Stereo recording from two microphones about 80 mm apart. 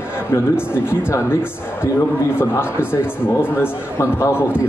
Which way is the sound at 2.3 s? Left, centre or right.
Left.